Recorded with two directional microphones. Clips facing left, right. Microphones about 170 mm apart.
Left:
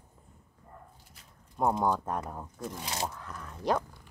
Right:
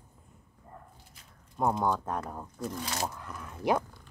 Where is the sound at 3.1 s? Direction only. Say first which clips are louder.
Right 1 dB; 5° right (ahead or behind).